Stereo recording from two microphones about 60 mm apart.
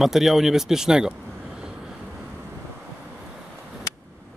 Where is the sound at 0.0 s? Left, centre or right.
Centre.